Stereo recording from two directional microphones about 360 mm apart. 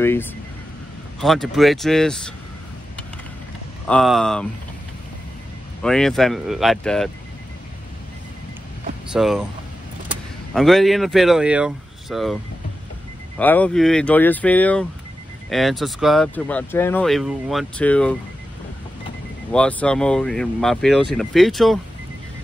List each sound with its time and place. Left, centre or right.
0.0 s speech: centre
3.8 s speech: centre
5.8 s speech: centre
9.1 s speech: centre
10.5 s speech: centre
13.4 s speech: centre
19.5 s speech: centre